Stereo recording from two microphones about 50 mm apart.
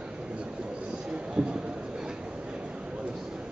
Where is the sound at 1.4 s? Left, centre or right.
Right.